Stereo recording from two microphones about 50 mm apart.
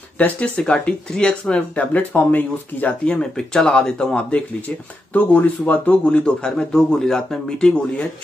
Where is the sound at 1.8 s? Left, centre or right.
Left.